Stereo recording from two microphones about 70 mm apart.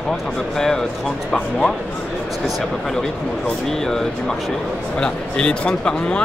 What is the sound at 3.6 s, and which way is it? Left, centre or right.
Speech, centre.